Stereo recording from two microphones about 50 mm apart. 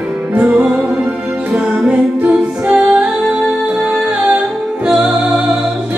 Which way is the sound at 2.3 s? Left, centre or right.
Right.